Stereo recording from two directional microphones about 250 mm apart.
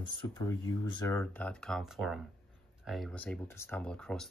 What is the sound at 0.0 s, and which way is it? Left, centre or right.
Speech, centre.